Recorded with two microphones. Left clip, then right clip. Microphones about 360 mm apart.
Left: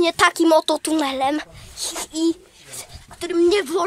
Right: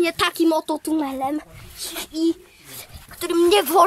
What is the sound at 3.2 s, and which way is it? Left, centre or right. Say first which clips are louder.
Speech: right 1 dB; centre.